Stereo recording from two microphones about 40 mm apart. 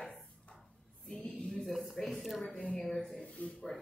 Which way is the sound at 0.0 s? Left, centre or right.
Left.